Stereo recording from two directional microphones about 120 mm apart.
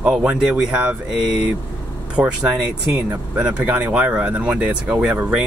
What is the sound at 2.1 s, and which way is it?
Speech, 10° right (ahead or behind).